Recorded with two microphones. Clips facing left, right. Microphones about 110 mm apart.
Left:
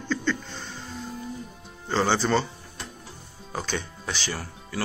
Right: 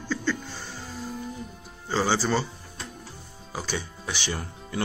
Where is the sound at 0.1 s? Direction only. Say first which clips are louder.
Left 1 dB; 10° right (ahead or behind).